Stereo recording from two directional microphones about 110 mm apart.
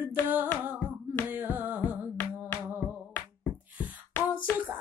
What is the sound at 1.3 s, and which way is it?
Music, 15° right (ahead or behind).